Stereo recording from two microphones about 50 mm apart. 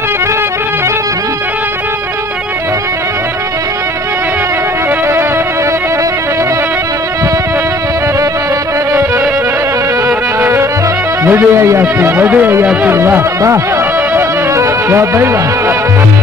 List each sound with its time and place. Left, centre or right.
11.3 s speech: right
14.5 s music: right